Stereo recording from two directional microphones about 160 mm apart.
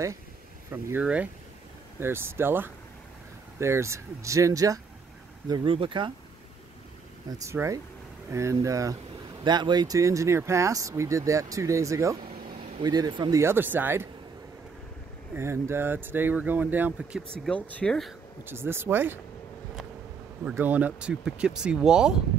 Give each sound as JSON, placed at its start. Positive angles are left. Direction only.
{"t": 0.7, "sound": "speech", "side_deg": -15}
{"t": 5.5, "sound": "speech", "side_deg": -30}
{"t": 7.2, "sound": "speech", "side_deg": -20}
{"t": 13.4, "sound": "speech", "side_deg": -15}
{"t": 15.3, "sound": "speech", "side_deg": -15}
{"t": 17.4, "sound": "speech", "side_deg": 10}
{"t": 18.4, "sound": "speech", "side_deg": -15}
{"t": 20.4, "sound": "speech", "side_deg": -10}